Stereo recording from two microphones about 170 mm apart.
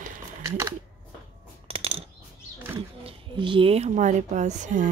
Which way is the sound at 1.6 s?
35° right (ahead or behind).